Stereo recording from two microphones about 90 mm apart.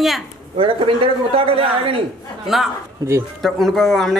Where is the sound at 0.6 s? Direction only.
90° right.